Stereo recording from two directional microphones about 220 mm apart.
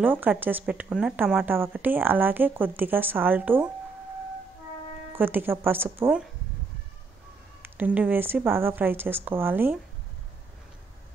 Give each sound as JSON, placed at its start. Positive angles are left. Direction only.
{"t": 0.0, "sound": "speech", "side_deg": -10}
{"t": 5.1, "sound": "speech", "side_deg": -10}
{"t": 7.6, "sound": "speech", "side_deg": -10}